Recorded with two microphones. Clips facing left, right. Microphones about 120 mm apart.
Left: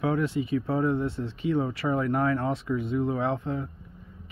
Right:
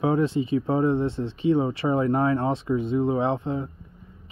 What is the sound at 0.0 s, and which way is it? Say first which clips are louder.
Speech: right 4 dB; 25° right (ahead or behind).